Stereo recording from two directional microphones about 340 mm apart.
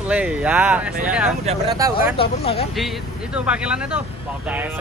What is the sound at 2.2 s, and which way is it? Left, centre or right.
Speech, centre.